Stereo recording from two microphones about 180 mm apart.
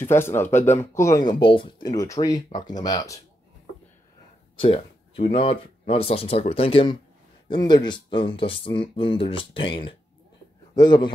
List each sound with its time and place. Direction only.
0.0 s speech: 15° left (ahead or behind)
4.6 s speech: 30° left (ahead or behind)